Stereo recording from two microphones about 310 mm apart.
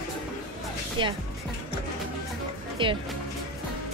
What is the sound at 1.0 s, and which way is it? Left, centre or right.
Speech, centre.